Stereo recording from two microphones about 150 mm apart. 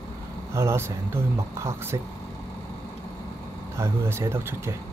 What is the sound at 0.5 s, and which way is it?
Speech, 15° right (ahead or behind).